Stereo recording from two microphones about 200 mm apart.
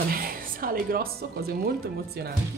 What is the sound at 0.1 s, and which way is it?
Music, 45° right (ahead or behind).